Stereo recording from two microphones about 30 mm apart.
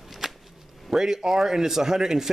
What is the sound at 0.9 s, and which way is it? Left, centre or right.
Speech, centre.